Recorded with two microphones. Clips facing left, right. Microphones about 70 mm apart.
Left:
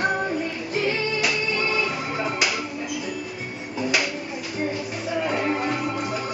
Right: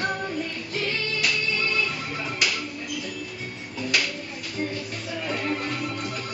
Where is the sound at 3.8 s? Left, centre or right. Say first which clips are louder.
Left 3 dB; centre.